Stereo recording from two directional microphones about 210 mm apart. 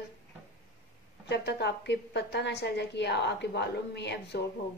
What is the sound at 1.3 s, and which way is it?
Speech, 55° left (ahead or behind).